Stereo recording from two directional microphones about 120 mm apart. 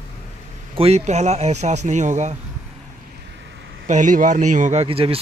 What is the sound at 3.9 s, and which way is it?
Speech, 90° right.